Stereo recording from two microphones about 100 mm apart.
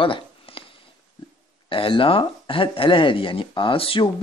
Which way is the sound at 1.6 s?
60° left (ahead or behind).